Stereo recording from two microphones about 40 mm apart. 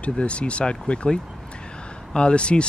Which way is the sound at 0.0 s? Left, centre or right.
Left.